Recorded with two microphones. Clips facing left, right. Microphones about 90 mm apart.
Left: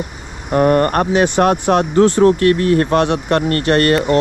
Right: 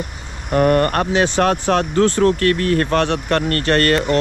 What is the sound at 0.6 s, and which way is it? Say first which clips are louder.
Speech: left 2 dB; 40° left (ahead or behind).